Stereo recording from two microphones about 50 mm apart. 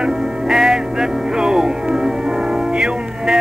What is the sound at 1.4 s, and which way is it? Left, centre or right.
Speech, centre.